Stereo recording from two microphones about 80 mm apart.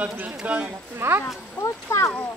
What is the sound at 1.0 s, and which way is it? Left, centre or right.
Speech, right.